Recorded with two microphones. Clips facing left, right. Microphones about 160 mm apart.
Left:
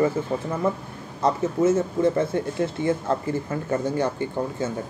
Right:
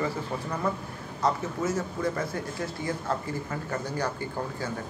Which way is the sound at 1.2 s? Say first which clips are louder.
Left 7 dB; 25° left (ahead or behind).